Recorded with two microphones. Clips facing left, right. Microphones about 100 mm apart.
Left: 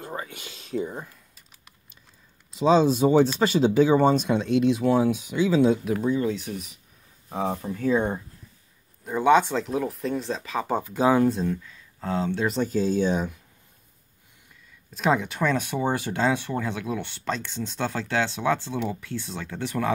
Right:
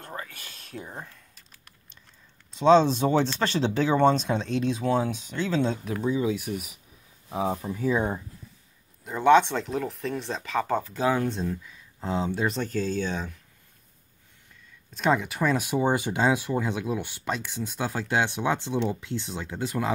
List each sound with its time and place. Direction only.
0.0 s speech: 15° left (ahead or behind)
6.0 s speech: 5° right (ahead or behind); by 11.2 s 15° left (ahead or behind)
11.2 s speech: centre (ahead or behind)
11.6 s speech: 20° right (ahead or behind)
12.4 s speech: centre (ahead or behind)
12.7 s speech: 15° left (ahead or behind)
15.0 s speech: centre (ahead or behind); by 19.9 s 15° right (ahead or behind)